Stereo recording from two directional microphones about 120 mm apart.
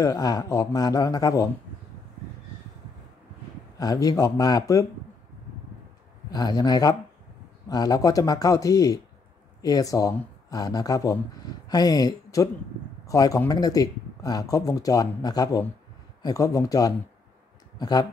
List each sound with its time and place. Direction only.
0.0 s speech: 30° left (ahead or behind)
3.7 s speech: 30° left (ahead or behind)
6.3 s a man's voice: 35° left (ahead or behind)